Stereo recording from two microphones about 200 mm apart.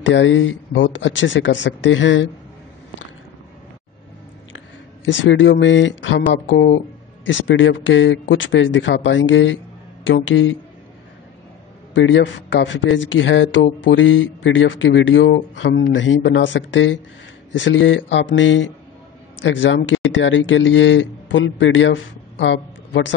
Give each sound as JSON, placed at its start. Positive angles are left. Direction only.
{"t": 0.0, "sound": "a man's voice", "side_deg": 65}
{"t": 5.0, "sound": "a man's voice", "side_deg": 70}
{"t": 11.9, "sound": "a man's voice", "side_deg": 65}